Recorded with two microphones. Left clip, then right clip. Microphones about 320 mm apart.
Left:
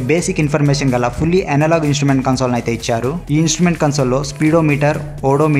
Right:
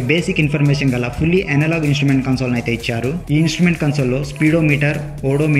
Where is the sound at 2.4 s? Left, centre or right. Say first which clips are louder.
Left 3 dB; left.